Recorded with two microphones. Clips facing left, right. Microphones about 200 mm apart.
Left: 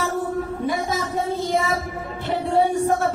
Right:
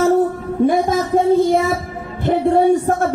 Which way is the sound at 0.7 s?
50° right (ahead or behind).